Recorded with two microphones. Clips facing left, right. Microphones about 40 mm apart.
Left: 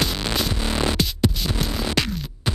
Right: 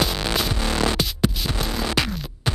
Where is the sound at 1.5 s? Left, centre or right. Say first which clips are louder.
Even; centre.